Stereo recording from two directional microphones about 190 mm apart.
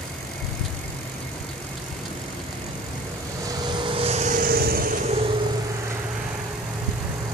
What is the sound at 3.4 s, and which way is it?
Vehicle, 25° right (ahead or behind).